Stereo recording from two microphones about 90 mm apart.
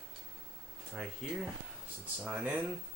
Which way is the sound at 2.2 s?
15° right (ahead or behind).